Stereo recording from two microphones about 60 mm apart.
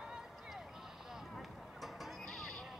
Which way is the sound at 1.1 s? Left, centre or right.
Centre.